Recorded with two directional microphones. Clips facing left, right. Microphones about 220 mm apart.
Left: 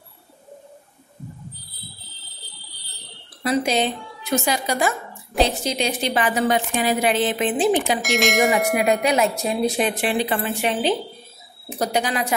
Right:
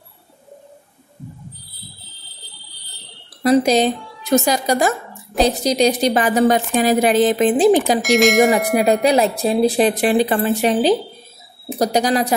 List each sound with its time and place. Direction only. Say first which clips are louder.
3.4 s a woman's voice: right 7 dB; 40° right (ahead or behind)
8.0 s bell: right 6 dB; centre (ahead or behind)
8.7 s a woman's voice: right 5 dB; 35° right (ahead or behind)